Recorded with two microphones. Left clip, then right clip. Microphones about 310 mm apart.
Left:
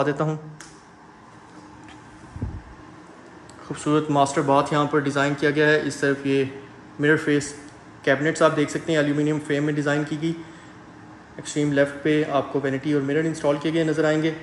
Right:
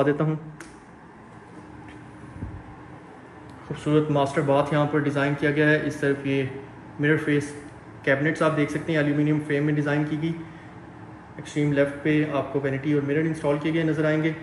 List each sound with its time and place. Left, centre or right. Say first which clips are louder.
0.0 s a man's voice: even; centre
3.7 s a man's voice: left 2 dB; centre
11.4 s a man's voice: left 2 dB; centre